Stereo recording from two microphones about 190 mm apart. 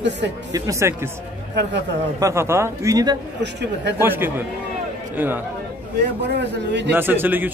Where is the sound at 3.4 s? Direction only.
65° right (ahead or behind).